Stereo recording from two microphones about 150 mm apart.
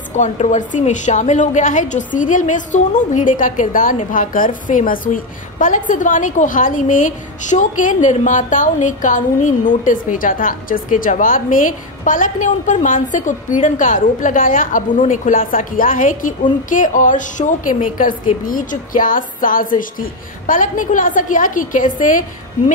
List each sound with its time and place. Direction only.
0.1 s a woman's voice: 50° left (ahead or behind)